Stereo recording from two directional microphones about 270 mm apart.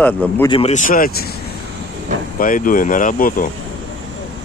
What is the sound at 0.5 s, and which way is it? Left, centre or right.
Speech, left.